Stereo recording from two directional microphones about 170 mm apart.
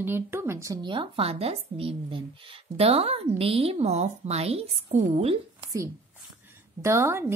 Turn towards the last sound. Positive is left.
turn(degrees=-15)  # may be behind; listen again after turning